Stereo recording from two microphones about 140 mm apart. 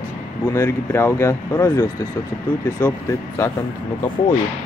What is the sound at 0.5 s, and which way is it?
Speech, 20° left (ahead or behind).